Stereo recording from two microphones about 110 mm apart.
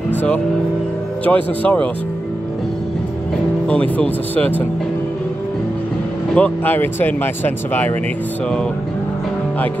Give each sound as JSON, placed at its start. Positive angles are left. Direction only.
{"t": 0.1, "sound": "vehicle", "side_deg": 15}
{"t": 1.2, "sound": "speech", "side_deg": 15}
{"t": 3.6, "sound": "speech", "side_deg": 15}
{"t": 6.3, "sound": "speech", "side_deg": 15}